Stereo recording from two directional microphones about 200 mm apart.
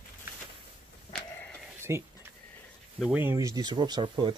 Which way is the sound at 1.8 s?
15° right (ahead or behind).